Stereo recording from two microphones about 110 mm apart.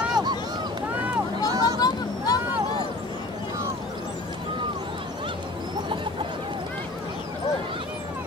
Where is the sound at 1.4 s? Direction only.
35° left (ahead or behind).